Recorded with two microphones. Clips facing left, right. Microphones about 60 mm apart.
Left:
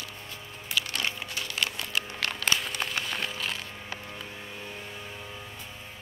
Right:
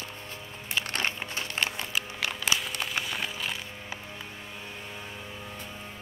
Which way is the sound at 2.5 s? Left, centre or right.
Centre.